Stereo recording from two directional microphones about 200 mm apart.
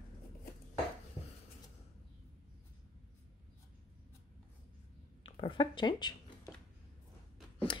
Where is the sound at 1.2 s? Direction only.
30° left (ahead or behind).